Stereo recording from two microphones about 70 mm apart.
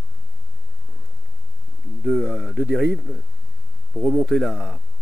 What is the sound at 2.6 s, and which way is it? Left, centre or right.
Speech, centre.